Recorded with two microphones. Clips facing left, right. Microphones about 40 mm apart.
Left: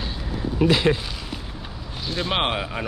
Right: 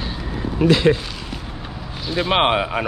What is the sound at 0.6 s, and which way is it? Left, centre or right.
Speech, centre.